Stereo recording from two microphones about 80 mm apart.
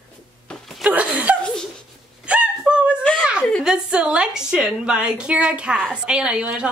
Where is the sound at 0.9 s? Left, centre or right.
Centre.